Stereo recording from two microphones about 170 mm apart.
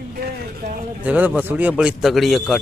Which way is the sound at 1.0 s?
10° right (ahead or behind).